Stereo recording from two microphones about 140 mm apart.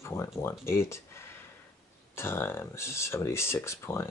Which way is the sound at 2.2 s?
15° left (ahead or behind).